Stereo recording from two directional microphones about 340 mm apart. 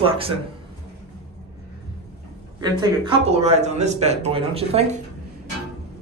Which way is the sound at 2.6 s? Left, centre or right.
Centre.